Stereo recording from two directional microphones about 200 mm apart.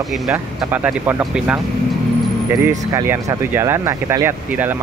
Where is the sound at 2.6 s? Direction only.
15° right (ahead or behind).